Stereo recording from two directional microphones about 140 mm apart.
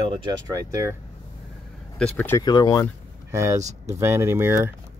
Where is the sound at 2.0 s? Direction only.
10° left (ahead or behind).